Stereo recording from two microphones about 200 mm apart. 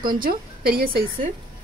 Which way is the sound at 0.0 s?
45° right (ahead or behind).